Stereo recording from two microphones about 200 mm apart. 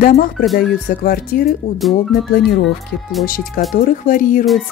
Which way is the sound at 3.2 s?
45° left (ahead or behind).